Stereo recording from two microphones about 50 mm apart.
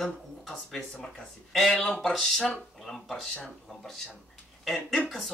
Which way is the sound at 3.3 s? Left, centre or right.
Centre.